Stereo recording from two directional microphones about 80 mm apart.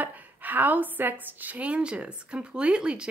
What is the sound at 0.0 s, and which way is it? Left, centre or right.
A woman's voice, right.